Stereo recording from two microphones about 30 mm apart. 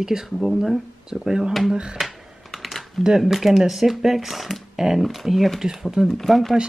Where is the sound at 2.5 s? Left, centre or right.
Centre.